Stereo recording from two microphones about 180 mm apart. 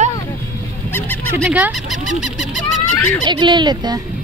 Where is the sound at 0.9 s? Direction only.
10° left (ahead or behind).